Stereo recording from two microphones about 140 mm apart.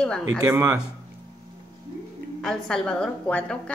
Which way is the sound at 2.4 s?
5° left (ahead or behind).